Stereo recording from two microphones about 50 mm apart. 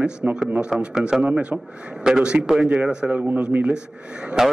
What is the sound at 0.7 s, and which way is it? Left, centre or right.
Speech, centre.